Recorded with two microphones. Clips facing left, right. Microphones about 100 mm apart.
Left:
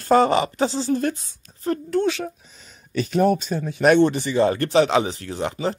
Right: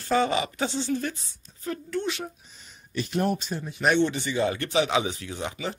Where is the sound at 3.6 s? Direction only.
65° left (ahead or behind).